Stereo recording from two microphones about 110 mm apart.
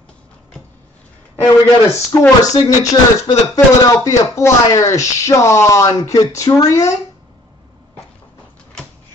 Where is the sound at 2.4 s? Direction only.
30° left (ahead or behind).